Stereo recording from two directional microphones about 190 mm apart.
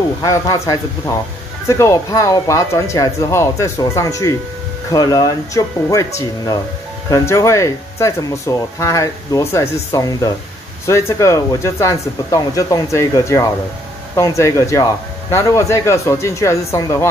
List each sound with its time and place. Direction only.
0.2 s speech: 20° left (ahead or behind)